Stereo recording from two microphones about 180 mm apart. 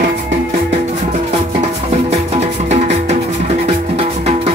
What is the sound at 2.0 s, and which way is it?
Music, 35° right (ahead or behind).